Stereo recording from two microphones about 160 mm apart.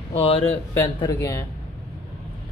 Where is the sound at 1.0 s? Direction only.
20° left (ahead or behind).